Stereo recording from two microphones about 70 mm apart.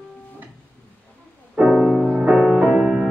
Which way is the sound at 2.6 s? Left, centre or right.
Centre.